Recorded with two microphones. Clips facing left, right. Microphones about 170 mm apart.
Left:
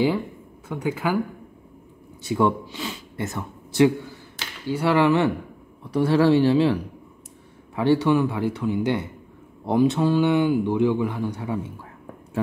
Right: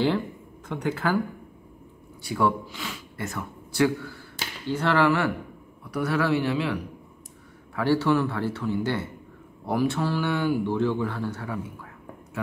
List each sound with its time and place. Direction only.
0.7 s a man's voice: 10° left (ahead or behind)
2.2 s speech: 20° left (ahead or behind)
4.6 s a man's voice: 10° left (ahead or behind); by 6.8 s 30° left (ahead or behind)
7.7 s a man's voice: 20° left (ahead or behind)